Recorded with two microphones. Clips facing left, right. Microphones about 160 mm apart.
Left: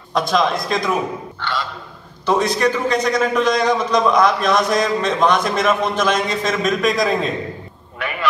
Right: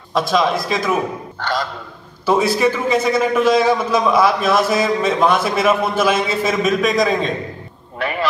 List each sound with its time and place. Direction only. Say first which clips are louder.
0.1 s a man's voice: right 1 dB; centre (ahead or behind)
1.4 s a man's voice: right 4 dB; 40° right (ahead or behind)
2.2 s a man's voice: right 2 dB; 5° right (ahead or behind)
8.0 s a sound: right 4 dB; 35° right (ahead or behind)